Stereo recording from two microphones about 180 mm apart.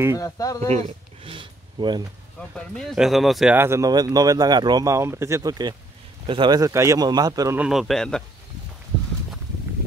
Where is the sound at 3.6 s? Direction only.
15° right (ahead or behind).